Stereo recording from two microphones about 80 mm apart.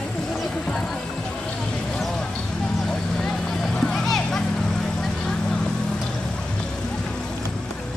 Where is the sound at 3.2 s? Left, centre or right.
Centre.